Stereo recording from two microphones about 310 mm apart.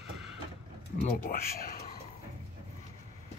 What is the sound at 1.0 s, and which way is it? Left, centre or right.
Speech, left.